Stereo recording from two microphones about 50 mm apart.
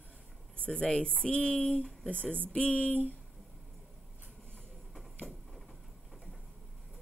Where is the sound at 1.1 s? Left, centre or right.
Left.